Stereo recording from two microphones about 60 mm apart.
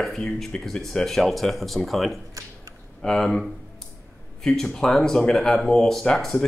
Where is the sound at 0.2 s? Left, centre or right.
Centre.